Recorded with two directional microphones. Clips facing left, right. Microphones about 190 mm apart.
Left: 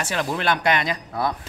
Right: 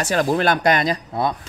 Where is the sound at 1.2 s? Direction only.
25° right (ahead or behind).